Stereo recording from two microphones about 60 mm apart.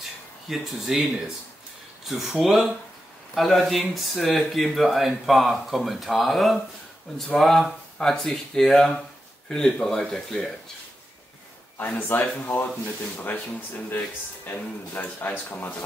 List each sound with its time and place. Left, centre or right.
0.5 s speech: centre
2.0 s speech: centre
12.1 s speech: left